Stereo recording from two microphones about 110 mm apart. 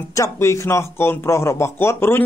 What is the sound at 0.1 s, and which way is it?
A man's voice, 25° left (ahead or behind).